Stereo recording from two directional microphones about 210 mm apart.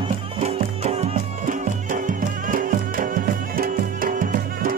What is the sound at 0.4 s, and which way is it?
Music, 30° right (ahead or behind).